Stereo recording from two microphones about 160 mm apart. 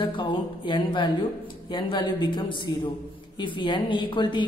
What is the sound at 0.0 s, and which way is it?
A woman's voice, 30° left (ahead or behind).